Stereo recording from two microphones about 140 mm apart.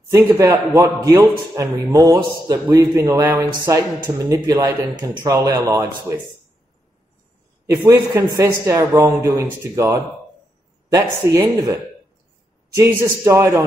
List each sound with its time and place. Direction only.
0.1 s a man's voice: 20° right (ahead or behind)
7.8 s a man's voice: 20° right (ahead or behind)